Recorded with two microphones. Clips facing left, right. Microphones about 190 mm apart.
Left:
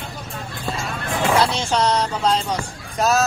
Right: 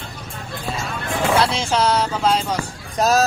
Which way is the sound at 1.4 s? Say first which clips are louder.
Right 1 dB; centre (ahead or behind).